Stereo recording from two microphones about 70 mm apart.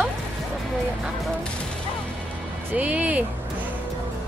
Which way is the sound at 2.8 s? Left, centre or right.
Right.